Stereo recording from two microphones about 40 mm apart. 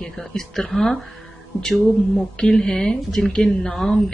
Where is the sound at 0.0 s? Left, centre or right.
Centre.